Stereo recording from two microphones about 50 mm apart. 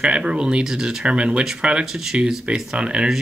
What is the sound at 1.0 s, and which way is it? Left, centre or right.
Speech, right.